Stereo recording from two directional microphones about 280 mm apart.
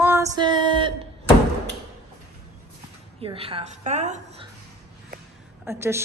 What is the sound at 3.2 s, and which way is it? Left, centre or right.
A woman's voice, centre.